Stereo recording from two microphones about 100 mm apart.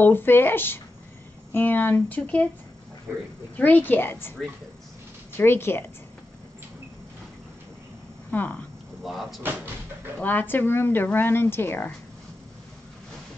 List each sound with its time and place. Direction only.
0.0 s speech: 20° left (ahead or behind)
3.5 s speech: 15° left (ahead or behind)
5.4 s speech: 20° left (ahead or behind)
8.3 s speech: 20° left (ahead or behind)
9.0 s speech: centre (ahead or behind)
10.2 s speech: 20° left (ahead or behind)